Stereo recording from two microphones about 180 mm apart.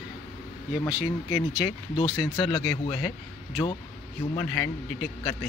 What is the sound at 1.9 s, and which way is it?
Speech, 25° left (ahead or behind).